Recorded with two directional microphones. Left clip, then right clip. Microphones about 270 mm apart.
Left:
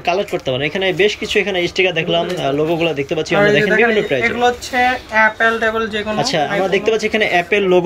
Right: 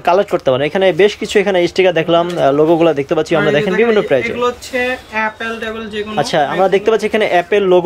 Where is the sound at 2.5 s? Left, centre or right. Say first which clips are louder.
Right 5 dB; right.